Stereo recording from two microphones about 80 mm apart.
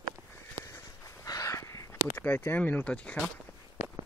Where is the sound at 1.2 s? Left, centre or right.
Left.